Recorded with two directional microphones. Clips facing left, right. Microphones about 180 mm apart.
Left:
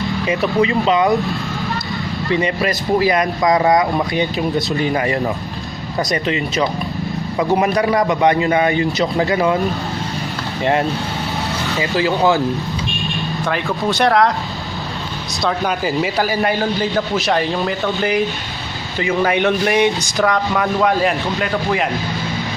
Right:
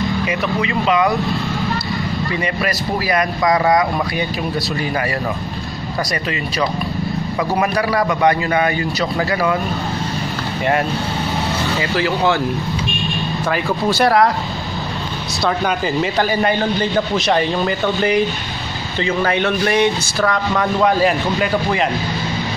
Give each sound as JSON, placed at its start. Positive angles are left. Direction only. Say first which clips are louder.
{"t": 0.3, "sound": "speech", "louder": "left 4 dB", "side_deg": 30}
{"t": 2.3, "sound": "speech", "louder": "left 6 dB", "side_deg": 25}
{"t": 6.2, "sound": "speech", "louder": "left 2 dB", "side_deg": 25}
{"t": 10.6, "sound": "speech", "louder": "left 1 dB", "side_deg": 20}
{"t": 13.5, "sound": "a man's voice", "louder": "right 1 dB", "side_deg": 0}
{"t": 15.4, "sound": "a man's voice", "louder": "even", "side_deg": 5}
{"t": 18.9, "sound": "speech", "louder": "left 1 dB", "side_deg": 15}
{"t": 20.8, "sound": "a man's voice", "louder": "right 3 dB", "side_deg": 0}